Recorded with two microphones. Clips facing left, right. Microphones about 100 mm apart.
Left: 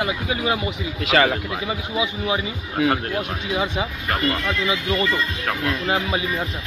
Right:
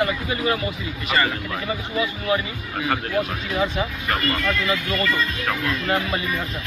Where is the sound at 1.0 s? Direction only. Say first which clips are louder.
Left 4 dB; 90° left.